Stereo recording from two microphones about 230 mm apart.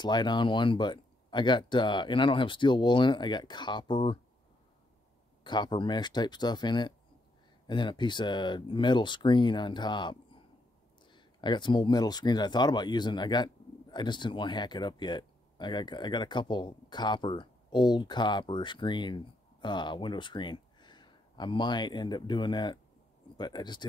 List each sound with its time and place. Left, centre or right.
0.0 s speech: centre
5.4 s speech: centre